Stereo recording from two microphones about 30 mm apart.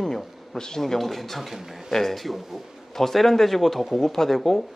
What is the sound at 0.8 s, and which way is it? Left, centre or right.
Speech, centre.